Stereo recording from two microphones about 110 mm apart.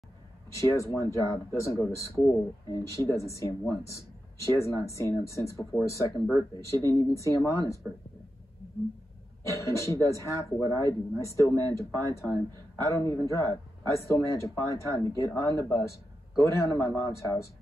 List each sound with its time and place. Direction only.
0.6 s speech: 30° left (ahead or behind)
4.6 s speech: 25° left (ahead or behind)
9.5 s speech: 25° left (ahead or behind)